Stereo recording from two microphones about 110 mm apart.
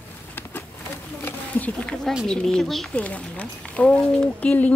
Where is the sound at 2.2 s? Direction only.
5° left (ahead or behind).